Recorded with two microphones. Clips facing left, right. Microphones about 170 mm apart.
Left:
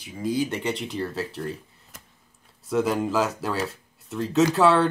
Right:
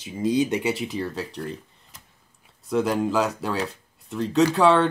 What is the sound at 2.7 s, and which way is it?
Speech, centre (ahead or behind).